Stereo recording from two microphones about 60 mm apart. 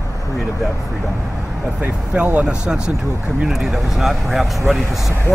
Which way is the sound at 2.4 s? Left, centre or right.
Centre.